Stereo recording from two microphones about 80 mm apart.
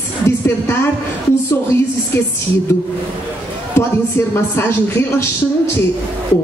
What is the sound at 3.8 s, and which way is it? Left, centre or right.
Speech, left.